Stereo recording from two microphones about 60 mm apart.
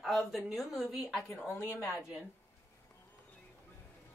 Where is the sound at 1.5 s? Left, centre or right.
Left.